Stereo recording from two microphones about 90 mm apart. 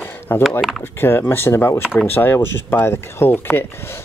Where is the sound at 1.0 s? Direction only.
25° left (ahead or behind).